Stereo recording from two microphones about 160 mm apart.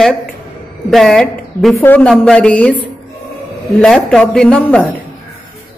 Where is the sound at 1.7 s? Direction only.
10° left (ahead or behind).